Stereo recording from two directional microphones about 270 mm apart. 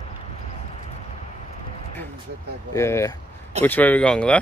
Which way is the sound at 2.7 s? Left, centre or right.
Centre.